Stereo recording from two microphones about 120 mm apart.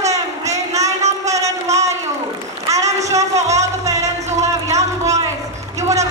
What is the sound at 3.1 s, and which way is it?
Music, 70° right (ahead or behind).